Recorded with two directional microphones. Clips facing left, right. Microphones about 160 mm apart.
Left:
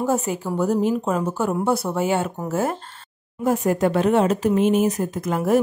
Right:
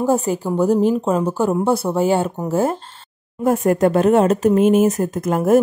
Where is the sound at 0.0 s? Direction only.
30° right (ahead or behind).